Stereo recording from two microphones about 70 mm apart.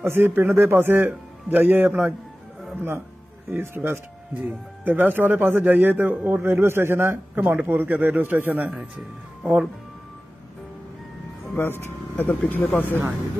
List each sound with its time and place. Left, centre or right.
0.0 s speech: right
3.4 s a man's voice: right
4.3 s speech: right
6.4 s a man's voice: right
9.4 s speech: centre
11.5 s speech: left